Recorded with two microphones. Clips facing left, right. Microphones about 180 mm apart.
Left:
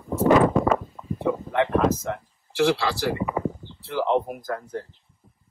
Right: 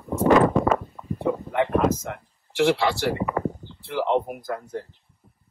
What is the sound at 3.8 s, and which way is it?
Speech, 15° right (ahead or behind).